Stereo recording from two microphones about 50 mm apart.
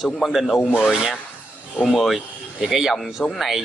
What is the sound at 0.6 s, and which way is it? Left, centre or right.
Speech, left.